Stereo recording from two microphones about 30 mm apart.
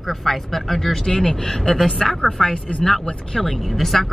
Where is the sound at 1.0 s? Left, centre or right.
Left.